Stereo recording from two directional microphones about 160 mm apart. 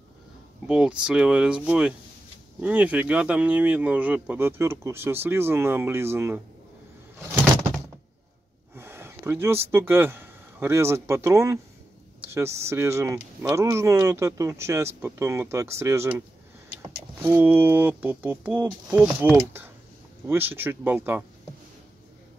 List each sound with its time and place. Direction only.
0.7 s speech: 5° right (ahead or behind)
8.7 s speech: 15° right (ahead or behind)
17.2 s speech: 10° right (ahead or behind)